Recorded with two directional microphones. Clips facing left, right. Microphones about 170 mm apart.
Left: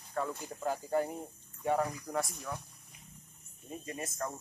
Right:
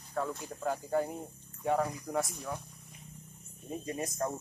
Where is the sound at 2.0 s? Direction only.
Centre (ahead or behind).